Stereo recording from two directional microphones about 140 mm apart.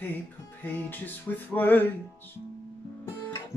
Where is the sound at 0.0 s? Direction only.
15° left (ahead or behind).